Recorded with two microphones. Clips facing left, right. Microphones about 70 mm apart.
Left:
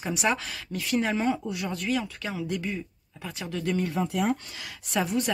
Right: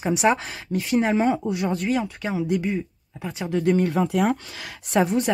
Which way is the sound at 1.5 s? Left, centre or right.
Right.